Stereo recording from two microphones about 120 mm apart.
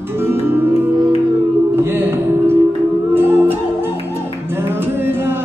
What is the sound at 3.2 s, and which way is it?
Music, 20° right (ahead or behind).